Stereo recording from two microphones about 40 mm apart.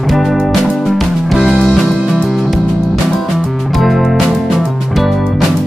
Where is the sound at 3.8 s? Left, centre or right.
Centre.